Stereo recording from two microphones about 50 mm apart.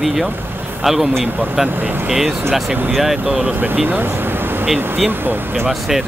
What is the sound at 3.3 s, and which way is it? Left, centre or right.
Speech, right.